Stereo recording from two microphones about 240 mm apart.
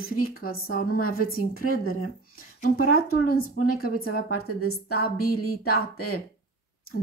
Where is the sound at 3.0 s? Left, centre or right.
Left.